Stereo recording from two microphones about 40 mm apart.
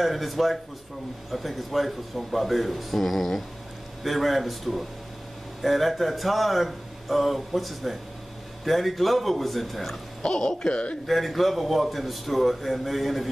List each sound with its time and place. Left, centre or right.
0.0 s a man's voice: centre
10.2 s speech: centre
11.1 s a man's voice: centre